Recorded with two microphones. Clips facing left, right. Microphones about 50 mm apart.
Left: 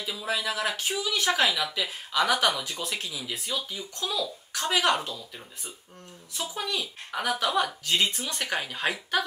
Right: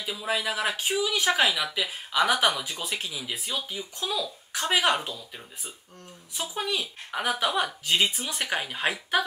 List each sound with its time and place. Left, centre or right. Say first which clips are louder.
0.0 s speech: right 1 dB; centre
6.3 s speech: right 2 dB; centre